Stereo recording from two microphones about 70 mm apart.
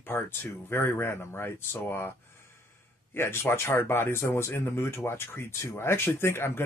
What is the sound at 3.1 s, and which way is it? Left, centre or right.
Speech, left.